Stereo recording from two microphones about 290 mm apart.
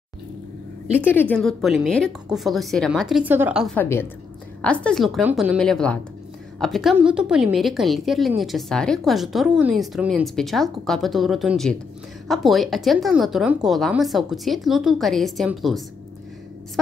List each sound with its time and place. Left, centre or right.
1.2 s a woman's voice: centre